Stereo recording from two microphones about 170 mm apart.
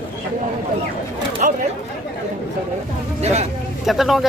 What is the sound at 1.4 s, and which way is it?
Chatter, 55° right (ahead or behind).